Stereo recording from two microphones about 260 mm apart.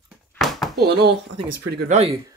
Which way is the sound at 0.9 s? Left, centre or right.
Right.